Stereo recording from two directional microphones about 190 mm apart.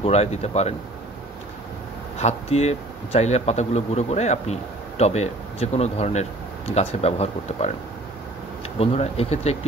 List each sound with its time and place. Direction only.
0.0 s speech: 35° left (ahead or behind)
2.1 s speech: 35° left (ahead or behind)
8.7 s speech: 30° left (ahead or behind)